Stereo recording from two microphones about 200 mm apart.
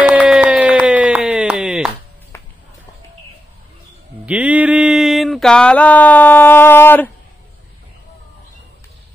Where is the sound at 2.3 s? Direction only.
15° left (ahead or behind).